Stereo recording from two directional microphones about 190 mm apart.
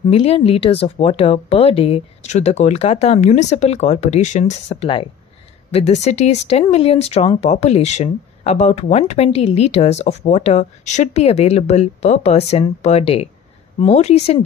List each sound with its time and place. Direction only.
0.1 s speech: 30° left (ahead or behind)